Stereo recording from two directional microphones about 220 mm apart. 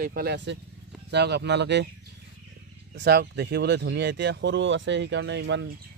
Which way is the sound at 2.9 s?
50° right (ahead or behind).